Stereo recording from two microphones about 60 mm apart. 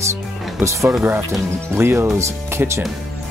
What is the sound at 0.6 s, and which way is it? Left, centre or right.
Speech, right.